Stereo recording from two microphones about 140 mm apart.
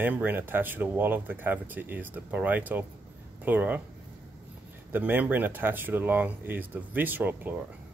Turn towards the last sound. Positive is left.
turn(degrees=-15)  # may be behind; listen again after turning